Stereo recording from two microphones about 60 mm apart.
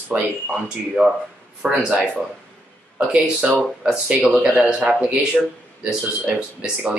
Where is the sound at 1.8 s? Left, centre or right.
Centre.